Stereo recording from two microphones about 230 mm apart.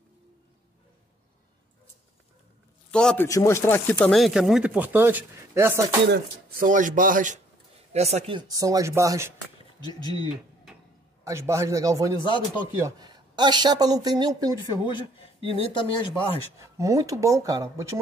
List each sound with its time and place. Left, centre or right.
2.9 s a man's voice: centre
6.0 s speech: right; by 9.3 s centre
9.8 s speech: centre
11.2 s speech: centre
12.2 s speech: centre
12.8 s speech: centre
15.5 s speech: left
16.5 s speech: centre